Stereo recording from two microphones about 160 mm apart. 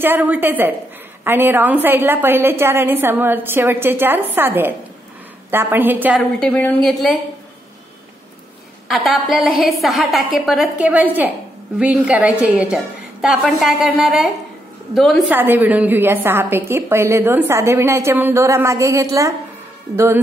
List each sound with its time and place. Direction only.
0.0 s a woman's voice: 10° right (ahead or behind)
6.1 s a woman's voice: 5° left (ahead or behind)
8.8 s a woman's voice: centre (ahead or behind)
15.3 s a woman's voice: 10° right (ahead or behind)